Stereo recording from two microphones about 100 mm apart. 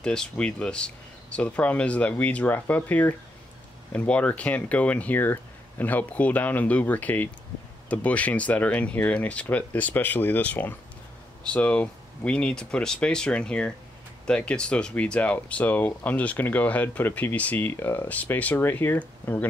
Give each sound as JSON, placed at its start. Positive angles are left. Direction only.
{"t": 0.0, "sound": "speech", "side_deg": 10}